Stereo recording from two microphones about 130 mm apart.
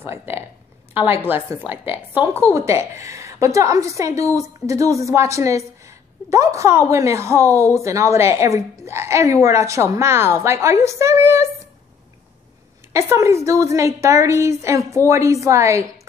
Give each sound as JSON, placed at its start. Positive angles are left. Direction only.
{"t": 0.0, "sound": "a sound", "side_deg": -20}
{"t": 1.2, "sound": "a woman's voice", "side_deg": -15}
{"t": 12.9, "sound": "a woman's voice", "side_deg": -20}